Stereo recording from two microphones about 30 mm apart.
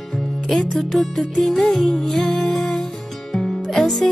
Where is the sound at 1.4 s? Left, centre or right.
Centre.